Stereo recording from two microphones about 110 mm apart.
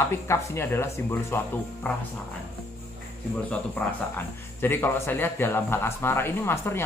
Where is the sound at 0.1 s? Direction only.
20° left (ahead or behind).